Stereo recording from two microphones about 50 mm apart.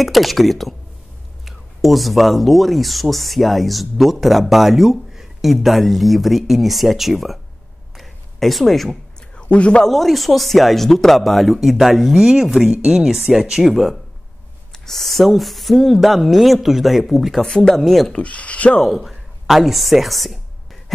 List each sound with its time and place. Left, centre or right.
0.0 s speech: centre
8.0 s a sound: centre
9.4 s speech: left
9.8 s speech: centre
17.4 s speech: centre
17.7 s speech: centre
18.1 s speech: left
18.8 s a woman's voice: centre